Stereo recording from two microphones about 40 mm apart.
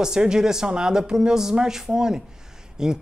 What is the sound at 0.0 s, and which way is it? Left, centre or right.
Speech, centre.